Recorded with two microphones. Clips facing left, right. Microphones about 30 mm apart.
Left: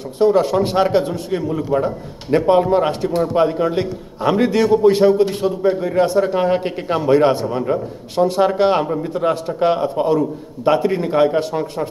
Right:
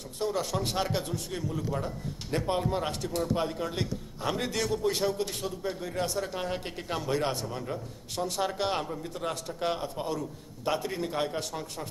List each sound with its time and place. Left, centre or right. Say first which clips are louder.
0.2 s a man's voice: left 16 dB; left
8.2 s a man's voice: left 15 dB; left